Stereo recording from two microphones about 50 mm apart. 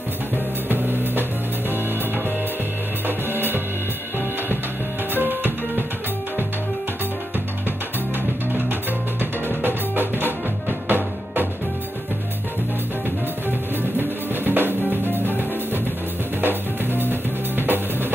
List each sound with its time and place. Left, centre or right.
0.7 s music: right
3.1 s music: right
5.1 s music: right
9.2 s music: right
13.9 s drum kit: right
15.1 s music: right
16.3 s drum kit: right